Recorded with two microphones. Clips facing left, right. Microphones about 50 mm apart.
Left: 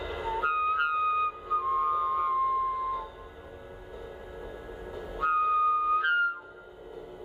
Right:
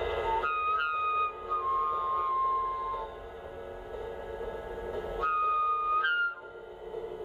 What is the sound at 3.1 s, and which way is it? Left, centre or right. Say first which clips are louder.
Music: right 3 dB; centre.